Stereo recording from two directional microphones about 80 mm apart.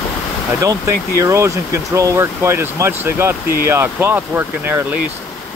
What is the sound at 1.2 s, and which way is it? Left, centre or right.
Speech, right.